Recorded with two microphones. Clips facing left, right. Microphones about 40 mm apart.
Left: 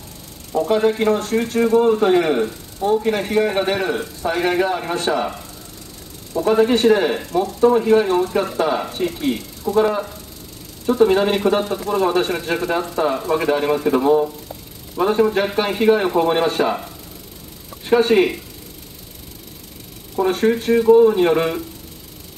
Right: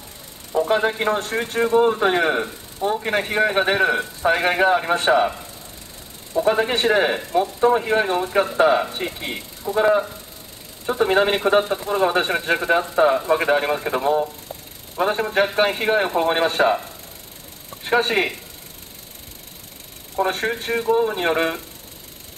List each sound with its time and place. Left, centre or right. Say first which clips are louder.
0.5 s a sound: left 1 dB; right
0.7 s speech: left 4 dB; right
6.3 s speech: left 3 dB; right
17.8 s speech: left 5 dB; centre
20.2 s speech: left 6 dB; right
20.7 s speech: left 8 dB; centre